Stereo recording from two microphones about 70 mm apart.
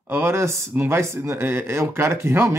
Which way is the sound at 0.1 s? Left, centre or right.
Right.